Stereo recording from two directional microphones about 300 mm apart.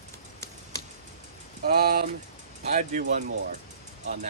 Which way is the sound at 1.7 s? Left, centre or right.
Right.